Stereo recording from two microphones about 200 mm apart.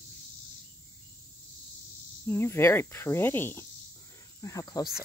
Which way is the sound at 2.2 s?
10° left (ahead or behind).